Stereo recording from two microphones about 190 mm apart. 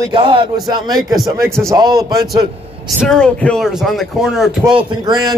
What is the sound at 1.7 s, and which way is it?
Speech, 20° right (ahead or behind).